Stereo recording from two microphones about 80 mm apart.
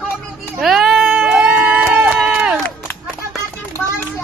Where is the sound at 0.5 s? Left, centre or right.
Centre.